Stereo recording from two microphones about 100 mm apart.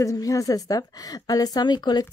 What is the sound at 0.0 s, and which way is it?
A woman's voice, 30° left (ahead or behind).